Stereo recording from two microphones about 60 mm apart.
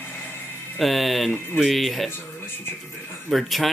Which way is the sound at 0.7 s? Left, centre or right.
Centre.